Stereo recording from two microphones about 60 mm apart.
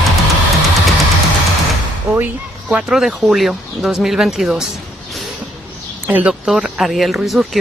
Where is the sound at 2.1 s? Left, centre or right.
Right.